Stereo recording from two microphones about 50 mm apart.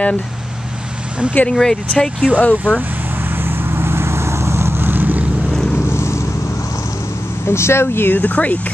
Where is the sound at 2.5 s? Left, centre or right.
Right.